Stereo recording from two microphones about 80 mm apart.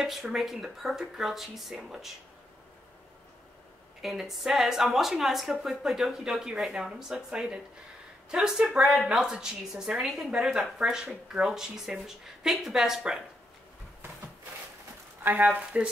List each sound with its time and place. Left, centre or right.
0.0 s a woman's voice: centre
4.0 s a woman's voice: centre
15.2 s speech: centre